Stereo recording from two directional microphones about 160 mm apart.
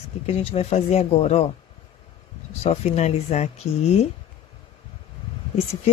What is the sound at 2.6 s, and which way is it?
Speech, 40° left (ahead or behind).